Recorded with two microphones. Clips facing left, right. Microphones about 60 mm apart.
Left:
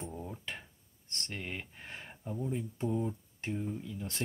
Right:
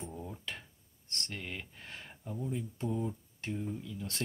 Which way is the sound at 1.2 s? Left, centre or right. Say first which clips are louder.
Left 3 dB; centre.